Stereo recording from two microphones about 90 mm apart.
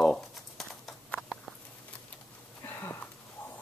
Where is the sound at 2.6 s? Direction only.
30° left (ahead or behind).